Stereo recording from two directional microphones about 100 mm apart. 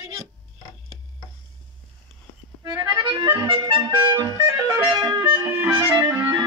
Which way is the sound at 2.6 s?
45° right (ahead or behind).